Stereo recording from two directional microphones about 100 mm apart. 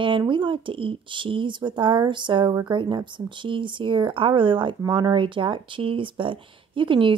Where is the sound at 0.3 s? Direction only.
55° right (ahead or behind).